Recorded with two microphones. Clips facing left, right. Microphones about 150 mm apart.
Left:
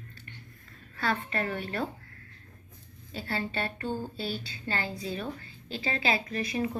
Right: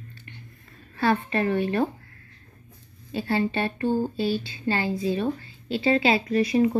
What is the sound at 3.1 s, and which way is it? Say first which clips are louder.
Speech: right 9 dB; 25° right (ahead or behind).